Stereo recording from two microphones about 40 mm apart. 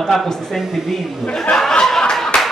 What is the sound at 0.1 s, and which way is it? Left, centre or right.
Speech, centre.